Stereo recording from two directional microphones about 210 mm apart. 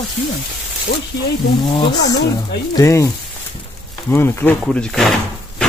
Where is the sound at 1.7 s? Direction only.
20° left (ahead or behind).